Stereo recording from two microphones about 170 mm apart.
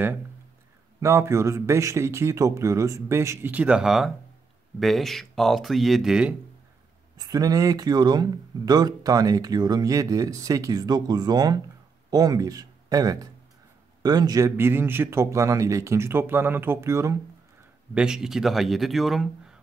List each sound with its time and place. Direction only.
1.0 s a man's voice: 15° right (ahead or behind)
7.2 s a man's voice: 20° right (ahead or behind)
17.9 s speech: 5° right (ahead or behind)